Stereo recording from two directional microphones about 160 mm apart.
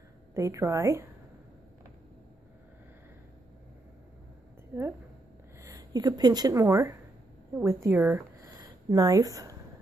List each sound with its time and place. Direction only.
0.3 s a woman's voice: 20° right (ahead or behind)
5.6 s a woman's voice: 20° right (ahead or behind)
8.4 s a sound: 20° right (ahead or behind)